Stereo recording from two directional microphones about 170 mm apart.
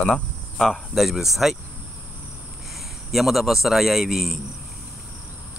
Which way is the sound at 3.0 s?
Centre (ahead or behind).